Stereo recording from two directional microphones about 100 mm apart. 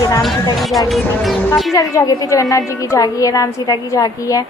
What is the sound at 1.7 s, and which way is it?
Speech, 35° left (ahead or behind).